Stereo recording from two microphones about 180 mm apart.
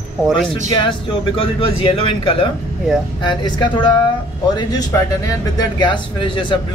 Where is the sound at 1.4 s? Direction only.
30° left (ahead or behind).